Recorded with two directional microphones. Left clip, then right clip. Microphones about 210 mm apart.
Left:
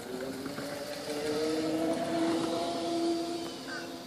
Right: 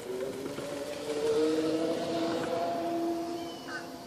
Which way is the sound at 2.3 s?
5° left (ahead or behind).